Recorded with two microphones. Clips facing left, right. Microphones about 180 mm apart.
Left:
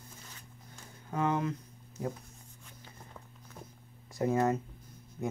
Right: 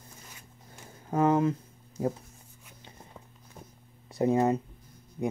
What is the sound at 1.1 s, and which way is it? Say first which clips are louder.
Speech: right 7 dB; 30° right (ahead or behind).